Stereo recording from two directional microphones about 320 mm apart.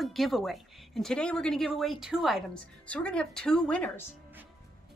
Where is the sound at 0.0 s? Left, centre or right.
Centre.